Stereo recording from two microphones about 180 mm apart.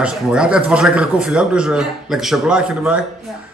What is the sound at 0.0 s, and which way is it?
A man's voice, 5° right (ahead or behind).